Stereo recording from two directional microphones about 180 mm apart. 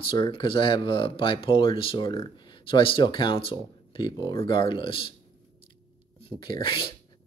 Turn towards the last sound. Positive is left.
turn(degrees=30)  # may be behind; listen again after turning